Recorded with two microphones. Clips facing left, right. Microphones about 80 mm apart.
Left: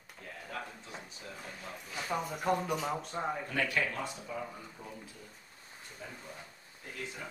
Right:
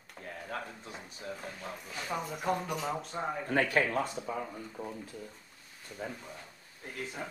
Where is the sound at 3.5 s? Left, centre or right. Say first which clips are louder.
Right 8 dB; right.